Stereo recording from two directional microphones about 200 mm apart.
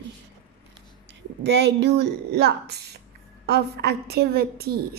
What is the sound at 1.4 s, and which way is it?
A woman's voice, 55° right (ahead or behind).